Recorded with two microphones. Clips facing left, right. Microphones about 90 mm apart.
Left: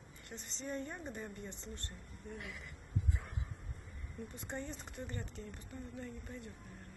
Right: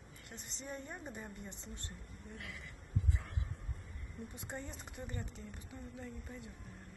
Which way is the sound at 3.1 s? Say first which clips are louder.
Even; 20° left (ahead or behind).